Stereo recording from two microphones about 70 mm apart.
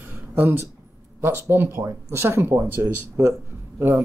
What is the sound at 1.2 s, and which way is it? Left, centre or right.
Speech, right.